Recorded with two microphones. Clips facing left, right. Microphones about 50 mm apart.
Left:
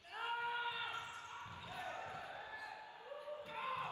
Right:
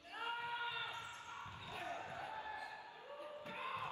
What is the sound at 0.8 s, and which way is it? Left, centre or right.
Basketball bounce, left.